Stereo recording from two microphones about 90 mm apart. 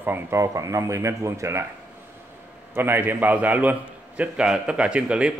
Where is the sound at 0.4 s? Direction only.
35° right (ahead or behind).